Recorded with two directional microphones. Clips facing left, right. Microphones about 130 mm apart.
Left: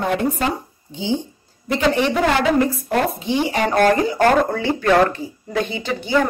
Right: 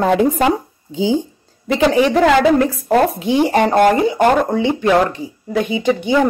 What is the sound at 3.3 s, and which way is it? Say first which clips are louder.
Speech: right 7 dB; 50° right (ahead or behind).